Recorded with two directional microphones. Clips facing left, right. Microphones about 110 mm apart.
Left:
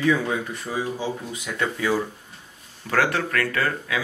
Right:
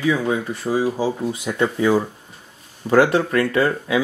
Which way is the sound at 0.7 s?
30° right (ahead or behind).